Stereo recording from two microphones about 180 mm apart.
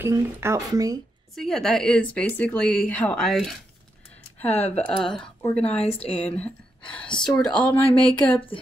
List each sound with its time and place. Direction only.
0.0 s speech: 15° right (ahead or behind)
1.3 s a woman's voice: centre (ahead or behind)
5.2 s speech: 30° left (ahead or behind)
6.9 s a woman's voice: 5° left (ahead or behind)
7.5 s speech: 30° left (ahead or behind)
8.0 s speech: 5° left (ahead or behind)